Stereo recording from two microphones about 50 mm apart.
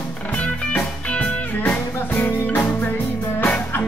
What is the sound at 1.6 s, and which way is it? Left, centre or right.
Music, left.